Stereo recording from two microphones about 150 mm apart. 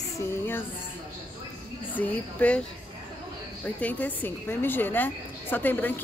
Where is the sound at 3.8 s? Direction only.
10° left (ahead or behind).